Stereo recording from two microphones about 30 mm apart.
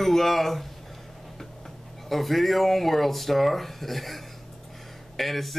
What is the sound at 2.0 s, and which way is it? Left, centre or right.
Speech, centre.